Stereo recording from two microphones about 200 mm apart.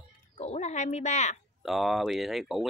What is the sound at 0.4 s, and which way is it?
Speech, 35° left (ahead or behind).